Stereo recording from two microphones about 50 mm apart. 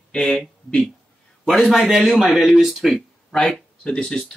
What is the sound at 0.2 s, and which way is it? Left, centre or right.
A man's voice, centre.